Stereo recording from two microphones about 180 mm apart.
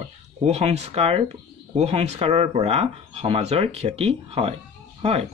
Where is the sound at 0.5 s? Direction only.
35° right (ahead or behind).